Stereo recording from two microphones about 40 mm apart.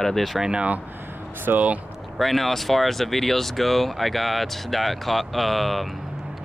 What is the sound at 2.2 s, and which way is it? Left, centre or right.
Speech, centre.